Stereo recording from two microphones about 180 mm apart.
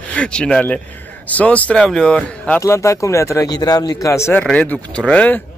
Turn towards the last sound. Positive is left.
turn(degrees=5)  # may be behind; listen again after turning